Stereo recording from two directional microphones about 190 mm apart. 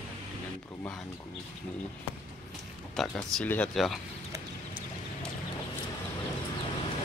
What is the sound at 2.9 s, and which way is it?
A man's voice, 5° left (ahead or behind).